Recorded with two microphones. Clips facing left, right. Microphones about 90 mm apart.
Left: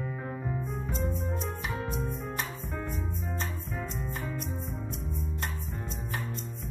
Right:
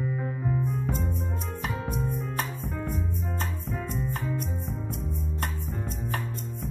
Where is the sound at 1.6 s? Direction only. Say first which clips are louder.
Right 2 dB; 45° right (ahead or behind).